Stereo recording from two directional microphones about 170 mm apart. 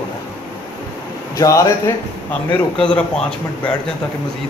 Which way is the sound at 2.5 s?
5° left (ahead or behind).